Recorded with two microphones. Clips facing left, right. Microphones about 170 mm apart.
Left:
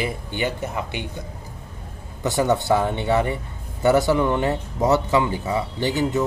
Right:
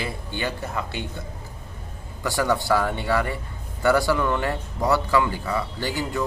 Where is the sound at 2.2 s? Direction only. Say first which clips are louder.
Left 3 dB; 20° left (ahead or behind).